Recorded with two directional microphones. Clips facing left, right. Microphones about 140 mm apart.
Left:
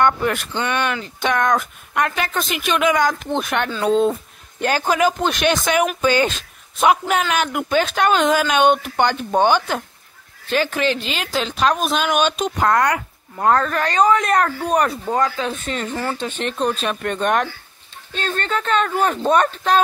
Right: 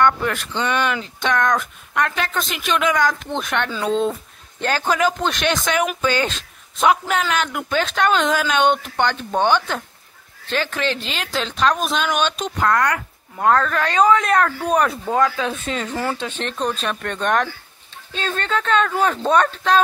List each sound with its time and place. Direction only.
0.0 s speech: 10° left (ahead or behind)
13.8 s speech: centre (ahead or behind)